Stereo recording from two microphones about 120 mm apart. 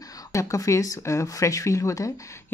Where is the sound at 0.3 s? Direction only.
25° left (ahead or behind).